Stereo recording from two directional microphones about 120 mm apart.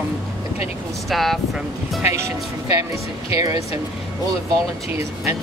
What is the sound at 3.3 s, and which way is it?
Speech, 30° right (ahead or behind).